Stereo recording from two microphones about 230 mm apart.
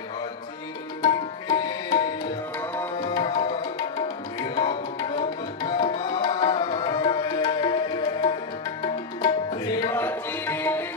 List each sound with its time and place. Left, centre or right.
1.0 s tabla: centre
3.1 s tabla: centre